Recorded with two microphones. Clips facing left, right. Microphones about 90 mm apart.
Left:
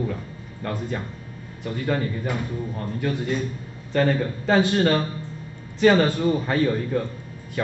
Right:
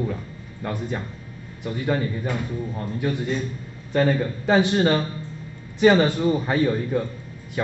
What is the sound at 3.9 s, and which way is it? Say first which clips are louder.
A man's voice: right 1 dB; 10° right (ahead or behind).